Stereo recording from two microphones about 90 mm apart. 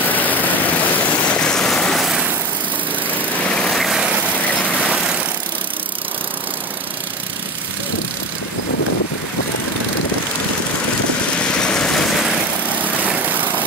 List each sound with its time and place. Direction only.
0.0 s vehicle: 20° left (ahead or behind); by 2.2 s centre (ahead or behind)
3.4 s vehicle: 10° left (ahead or behind)
4.4 s vehicle: 20° left (ahead or behind)
4.8 s vehicle: 10° right (ahead or behind)
11.3 s vehicle: 10° left (ahead or behind)
13.0 s lawn mower: 20° right (ahead or behind)